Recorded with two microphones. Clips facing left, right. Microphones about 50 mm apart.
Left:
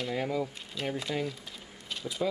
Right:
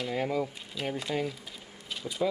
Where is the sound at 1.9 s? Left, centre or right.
Centre.